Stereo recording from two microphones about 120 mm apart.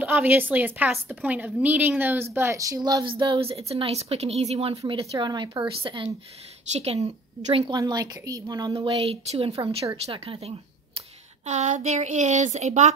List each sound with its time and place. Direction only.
0.0 s a woman's voice: 15° right (ahead or behind); by 5.0 s 50° right (ahead or behind)
5.1 s speech: 35° right (ahead or behind)
6.7 s a woman's voice: 60° right (ahead or behind)
7.7 s speech: 30° right (ahead or behind)
8.7 s a woman's voice: 50° right (ahead or behind)
11.4 s speech: 75° right (ahead or behind)